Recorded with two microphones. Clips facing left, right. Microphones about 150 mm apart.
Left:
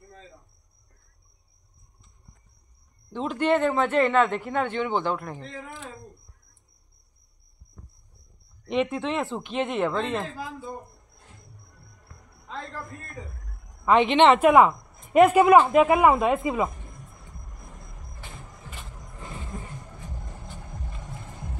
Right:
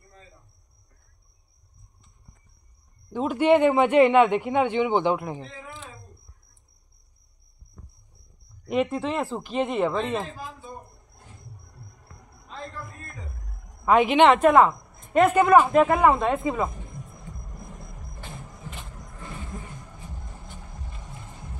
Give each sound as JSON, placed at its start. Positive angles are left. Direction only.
{"t": 3.1, "sound": "speech", "side_deg": -10}
{"t": 5.5, "sound": "speech", "side_deg": 55}
{"t": 8.6, "sound": "a woman's voice", "side_deg": 0}
{"t": 13.8, "sound": "a woman's voice", "side_deg": -5}